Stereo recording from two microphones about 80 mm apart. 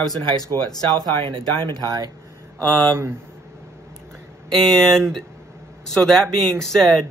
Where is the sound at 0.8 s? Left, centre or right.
Right.